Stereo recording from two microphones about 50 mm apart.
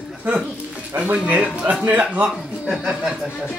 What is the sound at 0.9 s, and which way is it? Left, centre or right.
Speech, right.